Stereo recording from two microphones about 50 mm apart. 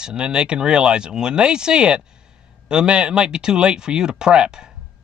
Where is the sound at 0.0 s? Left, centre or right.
Centre.